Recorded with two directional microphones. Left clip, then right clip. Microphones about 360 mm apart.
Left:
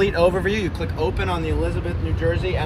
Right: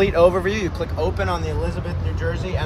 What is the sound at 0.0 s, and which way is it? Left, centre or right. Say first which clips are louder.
Speech: right 2 dB; centre.